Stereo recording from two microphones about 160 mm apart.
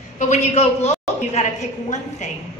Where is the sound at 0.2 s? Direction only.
45° left (ahead or behind).